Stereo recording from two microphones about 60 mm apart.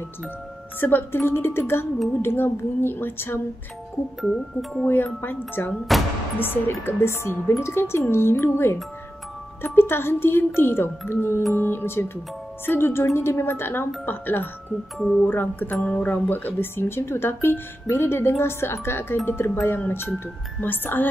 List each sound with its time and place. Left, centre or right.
0.7 s speech: left
4.2 s speech: centre
4.8 s speech: left
5.9 s speech: centre
6.4 s speech: left
7.1 s speech: left
9.8 s speech: left